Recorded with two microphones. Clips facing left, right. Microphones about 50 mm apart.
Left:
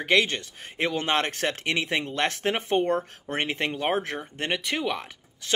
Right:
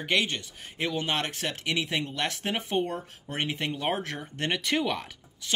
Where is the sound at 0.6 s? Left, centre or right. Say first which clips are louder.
Left 3 dB; left.